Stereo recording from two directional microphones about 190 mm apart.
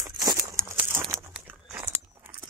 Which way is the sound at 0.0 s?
20° right (ahead or behind).